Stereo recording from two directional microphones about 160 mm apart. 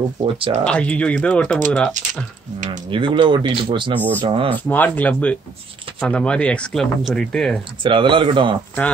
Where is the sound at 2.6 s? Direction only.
30° right (ahead or behind).